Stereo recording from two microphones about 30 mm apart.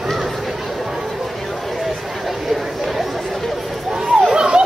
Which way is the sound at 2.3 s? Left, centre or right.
Centre.